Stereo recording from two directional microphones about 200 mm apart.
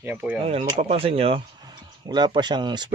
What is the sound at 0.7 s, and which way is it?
Speech, 30° right (ahead or behind).